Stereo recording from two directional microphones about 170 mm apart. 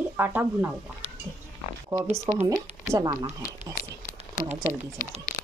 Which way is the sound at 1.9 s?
20° right (ahead or behind).